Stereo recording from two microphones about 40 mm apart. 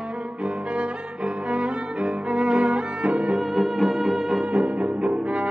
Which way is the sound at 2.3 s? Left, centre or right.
Right.